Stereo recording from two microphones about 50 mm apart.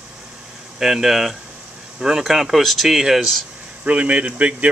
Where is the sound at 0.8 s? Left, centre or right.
Centre.